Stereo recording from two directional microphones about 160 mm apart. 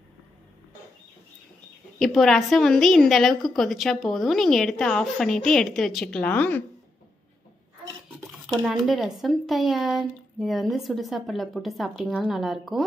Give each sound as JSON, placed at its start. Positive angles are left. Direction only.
{"t": 2.0, "sound": "a woman's voice", "side_deg": 5}
{"t": 8.6, "sound": "a woman's voice", "side_deg": 0}